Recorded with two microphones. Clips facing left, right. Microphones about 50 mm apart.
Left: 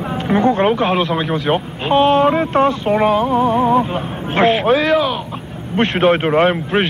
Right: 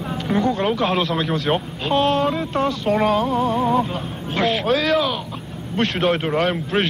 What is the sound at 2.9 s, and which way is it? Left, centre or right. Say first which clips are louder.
Speech: left 4 dB; centre.